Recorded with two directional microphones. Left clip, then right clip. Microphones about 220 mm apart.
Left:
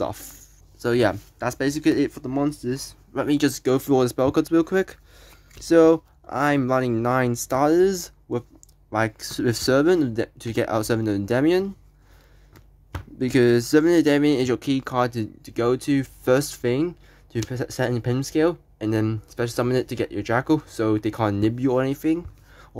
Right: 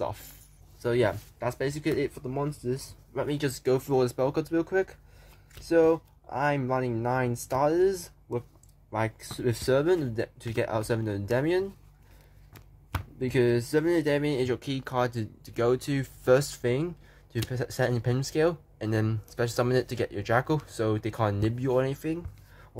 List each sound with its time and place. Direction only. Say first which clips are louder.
0.0 s speech: left 5 dB; 35° left (ahead or behind)
13.2 s speech: left 7 dB; 40° left (ahead or behind)